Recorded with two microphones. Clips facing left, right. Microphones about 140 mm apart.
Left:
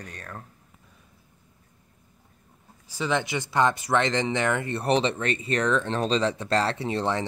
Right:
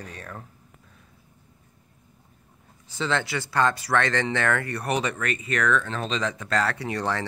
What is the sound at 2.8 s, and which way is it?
Speech, 10° left (ahead or behind).